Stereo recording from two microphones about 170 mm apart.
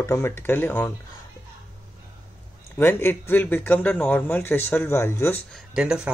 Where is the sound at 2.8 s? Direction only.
15° left (ahead or behind).